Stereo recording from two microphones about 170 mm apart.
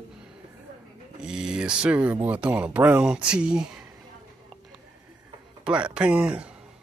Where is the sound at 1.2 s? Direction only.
5° right (ahead or behind).